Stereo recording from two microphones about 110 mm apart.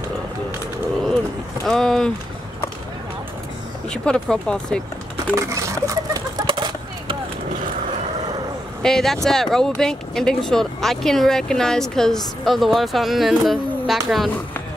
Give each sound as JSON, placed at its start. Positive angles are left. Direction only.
{"t": 1.6, "sound": "speech", "side_deg": 5}
{"t": 3.9, "sound": "speech", "side_deg": 5}
{"t": 5.3, "sound": "speech", "side_deg": -30}
{"t": 6.4, "sound": "a sound", "side_deg": -50}
{"t": 8.8, "sound": "speech", "side_deg": 5}